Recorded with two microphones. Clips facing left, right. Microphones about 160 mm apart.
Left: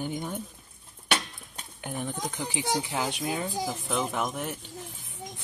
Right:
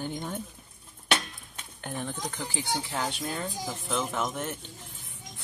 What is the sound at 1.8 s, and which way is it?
Speech, 10° left (ahead or behind).